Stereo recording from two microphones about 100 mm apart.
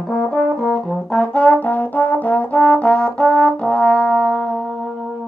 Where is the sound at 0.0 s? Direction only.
5° left (ahead or behind).